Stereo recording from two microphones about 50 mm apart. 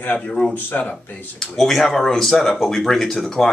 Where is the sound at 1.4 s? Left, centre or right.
Centre.